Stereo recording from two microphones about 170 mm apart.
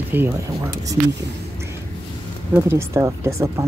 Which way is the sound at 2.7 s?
15° right (ahead or behind).